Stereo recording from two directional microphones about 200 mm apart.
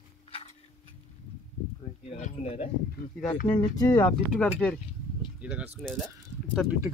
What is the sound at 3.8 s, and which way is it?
Speech, 15° left (ahead or behind).